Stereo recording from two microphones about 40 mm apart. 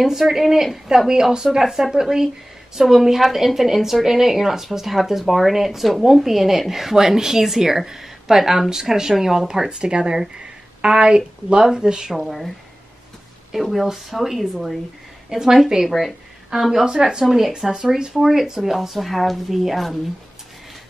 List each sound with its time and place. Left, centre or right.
0.0 s a woman's voice: centre
9.7 s speech: right
13.5 s speech: centre
15.2 s a woman's voice: centre
15.9 s speech: centre
16.8 s a woman's voice: centre